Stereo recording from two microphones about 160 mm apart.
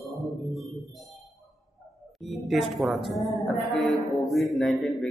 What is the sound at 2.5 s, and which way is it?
A man's voice, centre (ahead or behind).